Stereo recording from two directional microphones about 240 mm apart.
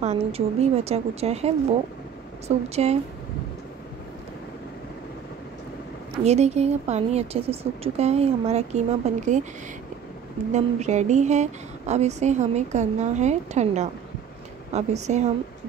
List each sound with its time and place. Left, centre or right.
0.0 s a woman's voice: right
6.1 s a woman's voice: right
10.5 s a woman's voice: right